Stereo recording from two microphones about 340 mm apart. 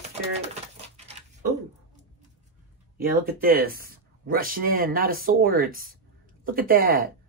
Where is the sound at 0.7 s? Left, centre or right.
Right.